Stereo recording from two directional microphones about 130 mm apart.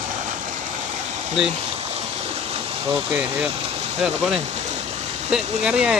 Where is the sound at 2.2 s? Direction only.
50° right (ahead or behind).